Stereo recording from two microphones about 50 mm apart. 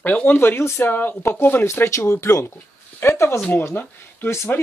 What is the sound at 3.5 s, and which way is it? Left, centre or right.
Speech, left.